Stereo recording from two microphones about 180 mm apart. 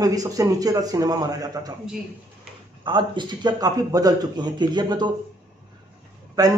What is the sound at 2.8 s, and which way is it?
A man's voice, 25° right (ahead or behind).